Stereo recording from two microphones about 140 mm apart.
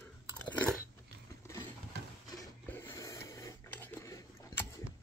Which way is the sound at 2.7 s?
20° left (ahead or behind).